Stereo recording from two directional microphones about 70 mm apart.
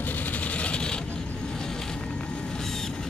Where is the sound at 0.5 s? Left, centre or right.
Centre.